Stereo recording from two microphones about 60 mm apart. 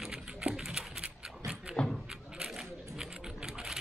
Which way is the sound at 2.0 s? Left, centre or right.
Centre.